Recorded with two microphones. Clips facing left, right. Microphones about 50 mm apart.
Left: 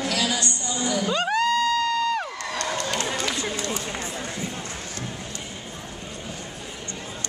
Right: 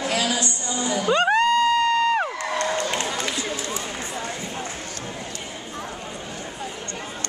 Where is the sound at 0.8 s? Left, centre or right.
Right.